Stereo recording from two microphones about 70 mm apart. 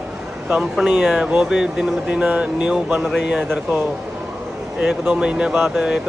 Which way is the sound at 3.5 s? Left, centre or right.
Right.